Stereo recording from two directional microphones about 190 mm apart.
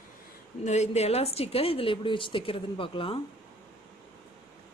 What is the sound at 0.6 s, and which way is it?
A woman's voice, 35° left (ahead or behind).